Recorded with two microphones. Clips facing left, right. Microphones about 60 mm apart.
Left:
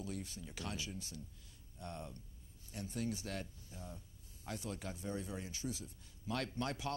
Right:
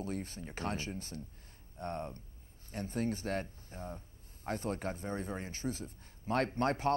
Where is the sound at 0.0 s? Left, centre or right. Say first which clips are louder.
Right 6 dB; right.